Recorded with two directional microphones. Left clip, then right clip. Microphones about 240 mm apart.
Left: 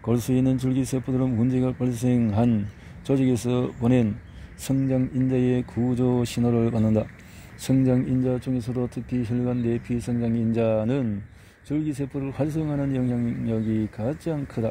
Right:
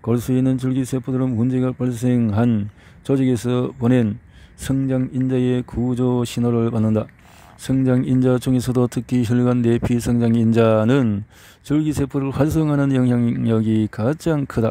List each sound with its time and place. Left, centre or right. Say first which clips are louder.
0.0 s speech: right 4 dB; right